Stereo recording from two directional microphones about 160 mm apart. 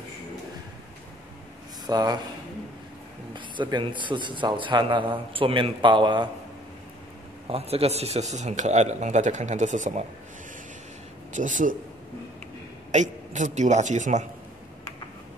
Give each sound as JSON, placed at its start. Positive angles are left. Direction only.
{"t": 1.9, "sound": "speech", "side_deg": -25}
{"t": 3.3, "sound": "a man's voice", "side_deg": -30}
{"t": 7.4, "sound": "a man's voice", "side_deg": -40}
{"t": 11.3, "sound": "a man's voice", "side_deg": -50}
{"t": 12.9, "sound": "a man's voice", "side_deg": -50}